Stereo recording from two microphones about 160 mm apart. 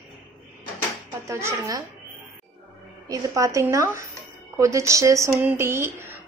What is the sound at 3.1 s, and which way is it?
A woman's voice, 20° right (ahead or behind).